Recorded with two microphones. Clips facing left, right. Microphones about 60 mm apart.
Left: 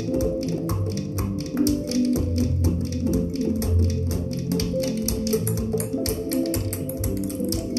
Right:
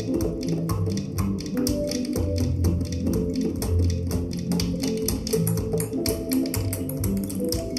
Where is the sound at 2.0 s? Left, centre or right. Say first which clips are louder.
Left 4 dB; right.